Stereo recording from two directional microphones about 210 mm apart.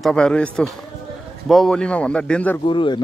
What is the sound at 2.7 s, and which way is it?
Speech, 20° left (ahead or behind).